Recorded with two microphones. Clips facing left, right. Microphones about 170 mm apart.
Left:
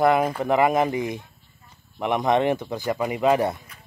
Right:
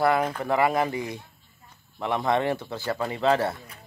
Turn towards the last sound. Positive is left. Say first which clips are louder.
# left 3 dB
turn(degrees=15)  # may be behind; listen again after turning